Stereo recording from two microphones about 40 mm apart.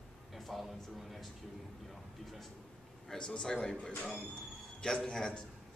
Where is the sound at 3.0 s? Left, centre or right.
Centre.